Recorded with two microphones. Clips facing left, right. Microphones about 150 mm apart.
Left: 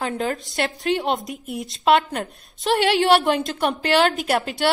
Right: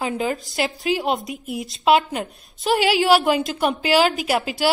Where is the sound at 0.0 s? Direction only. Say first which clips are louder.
Right 1 dB; centre (ahead or behind).